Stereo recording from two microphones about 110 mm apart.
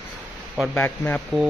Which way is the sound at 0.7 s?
15° left (ahead or behind).